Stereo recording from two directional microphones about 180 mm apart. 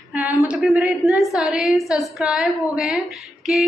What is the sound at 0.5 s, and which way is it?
A woman's voice, 5° right (ahead or behind).